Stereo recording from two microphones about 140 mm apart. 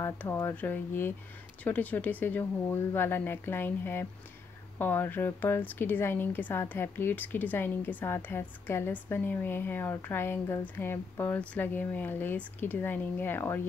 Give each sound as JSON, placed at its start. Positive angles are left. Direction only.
{"t": 0.0, "sound": "a woman's voice", "side_deg": 20}